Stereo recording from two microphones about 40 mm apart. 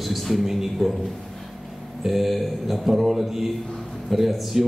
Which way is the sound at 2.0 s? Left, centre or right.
Centre.